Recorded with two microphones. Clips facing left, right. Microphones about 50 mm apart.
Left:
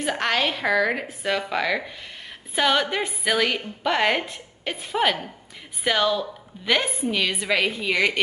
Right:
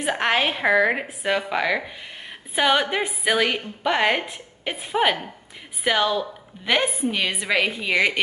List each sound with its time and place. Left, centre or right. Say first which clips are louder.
0.0 s a woman's voice: right 2 dB; centre